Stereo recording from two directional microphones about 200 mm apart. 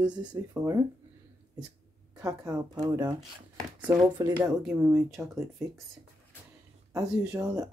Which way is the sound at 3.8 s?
10° right (ahead or behind).